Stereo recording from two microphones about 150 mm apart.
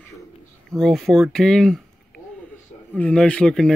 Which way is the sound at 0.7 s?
Centre (ahead or behind).